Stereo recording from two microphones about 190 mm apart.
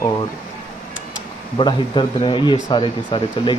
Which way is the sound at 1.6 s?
25° left (ahead or behind).